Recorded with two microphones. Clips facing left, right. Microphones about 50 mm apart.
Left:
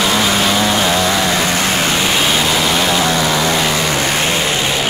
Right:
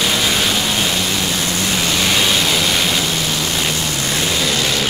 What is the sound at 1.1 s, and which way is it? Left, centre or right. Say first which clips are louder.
Vehicle: left 5 dB; left.